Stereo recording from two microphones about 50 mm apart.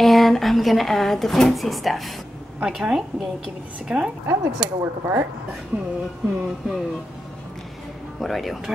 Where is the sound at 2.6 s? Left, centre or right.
Centre.